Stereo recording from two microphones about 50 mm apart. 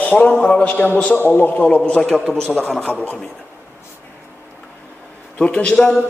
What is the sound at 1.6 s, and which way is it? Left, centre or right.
Speech, left.